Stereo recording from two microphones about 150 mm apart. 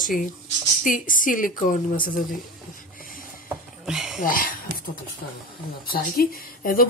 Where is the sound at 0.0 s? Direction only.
65° left (ahead or behind).